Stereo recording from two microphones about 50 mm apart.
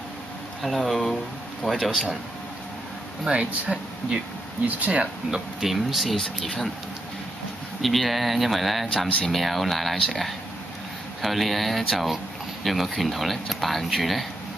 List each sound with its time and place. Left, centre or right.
0.6 s speech: centre
3.3 s speech: right
5.3 s speech: centre
7.8 s speech: centre
8.9 s speech: centre
9.3 s speech: centre
11.1 s speech: centre